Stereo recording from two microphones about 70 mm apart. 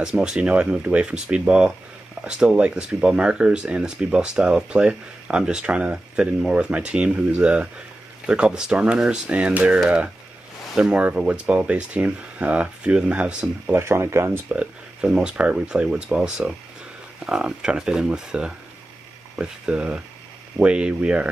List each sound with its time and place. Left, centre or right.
0.0 s speech: centre
13.7 s speech: right
14.5 s a sound: centre
15.0 s speech: centre